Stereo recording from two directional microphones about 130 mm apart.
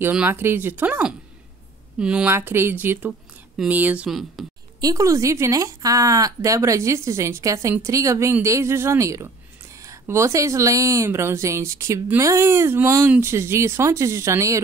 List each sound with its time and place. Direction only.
0.0 s speech: 15° right (ahead or behind)
2.3 s a woman's voice: 20° right (ahead or behind); by 4.5 s centre (ahead or behind)
4.7 s a woman's voice: 25° right (ahead or behind)